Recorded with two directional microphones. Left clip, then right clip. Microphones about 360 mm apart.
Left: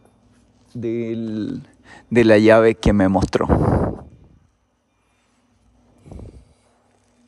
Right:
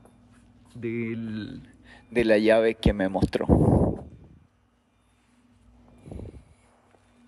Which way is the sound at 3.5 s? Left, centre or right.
Right.